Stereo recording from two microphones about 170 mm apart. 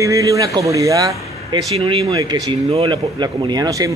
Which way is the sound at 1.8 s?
35° right (ahead or behind).